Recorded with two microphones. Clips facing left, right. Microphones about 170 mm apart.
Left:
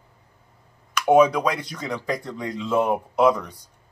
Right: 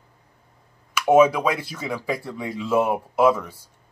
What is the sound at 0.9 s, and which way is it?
Speech, 5° right (ahead or behind).